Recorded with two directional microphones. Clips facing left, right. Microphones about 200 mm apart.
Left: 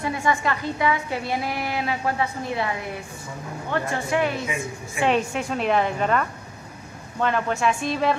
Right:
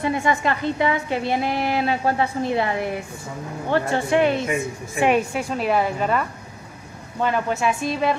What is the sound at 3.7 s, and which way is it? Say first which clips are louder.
Speech: right 5 dB; 30° right (ahead or behind).